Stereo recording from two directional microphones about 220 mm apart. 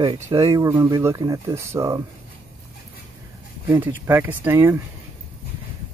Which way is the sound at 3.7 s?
10° right (ahead or behind).